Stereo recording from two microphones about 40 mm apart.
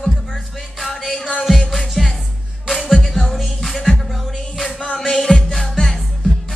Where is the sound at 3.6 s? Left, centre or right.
Centre.